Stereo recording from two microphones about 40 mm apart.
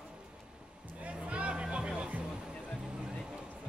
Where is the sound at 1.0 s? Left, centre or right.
Right.